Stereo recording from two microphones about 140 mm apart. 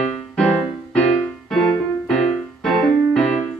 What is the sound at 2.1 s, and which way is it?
Music, 5° left (ahead or behind).